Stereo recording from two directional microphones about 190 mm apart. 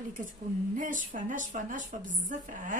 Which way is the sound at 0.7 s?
45° right (ahead or behind).